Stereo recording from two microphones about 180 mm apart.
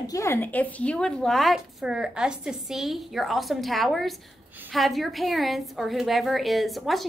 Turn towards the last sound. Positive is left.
turn(degrees=0)  # may be behind; listen again after turning